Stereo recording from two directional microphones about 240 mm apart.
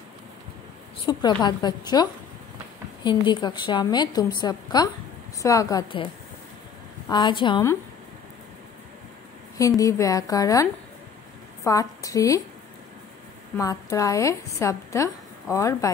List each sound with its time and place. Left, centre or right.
1.0 s a woman's voice: centre
7.1 s a woman's voice: centre
9.6 s a woman's voice: centre
13.6 s a woman's voice: centre